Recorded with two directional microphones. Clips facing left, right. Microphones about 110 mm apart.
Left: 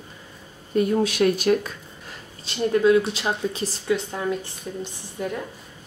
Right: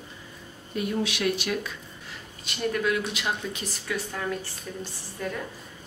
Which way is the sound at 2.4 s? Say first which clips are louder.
Left 8 dB; 25° left (ahead or behind).